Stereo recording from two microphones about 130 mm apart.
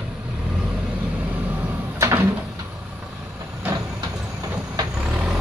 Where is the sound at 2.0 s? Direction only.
20° right (ahead or behind).